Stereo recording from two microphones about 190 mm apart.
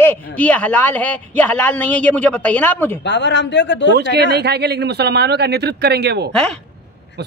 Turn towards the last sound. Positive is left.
turn(degrees=-60)  # may be behind; listen again after turning